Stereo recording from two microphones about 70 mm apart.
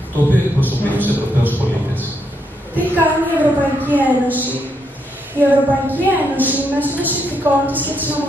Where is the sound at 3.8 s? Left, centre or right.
Right.